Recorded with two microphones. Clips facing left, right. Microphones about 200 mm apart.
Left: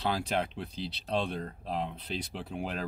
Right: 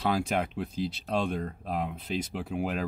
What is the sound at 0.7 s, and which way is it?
Speech, 50° right (ahead or behind).